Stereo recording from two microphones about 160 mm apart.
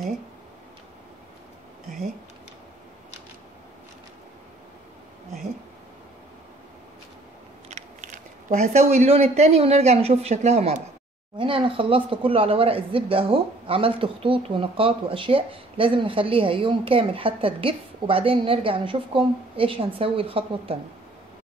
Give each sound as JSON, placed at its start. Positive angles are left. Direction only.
{"t": 1.9, "sound": "a sound", "side_deg": 0}
{"t": 7.7, "sound": "speech", "side_deg": -45}
{"t": 11.3, "sound": "speech", "side_deg": -35}